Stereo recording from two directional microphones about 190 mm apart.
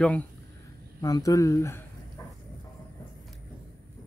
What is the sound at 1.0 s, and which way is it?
Speech, 20° left (ahead or behind).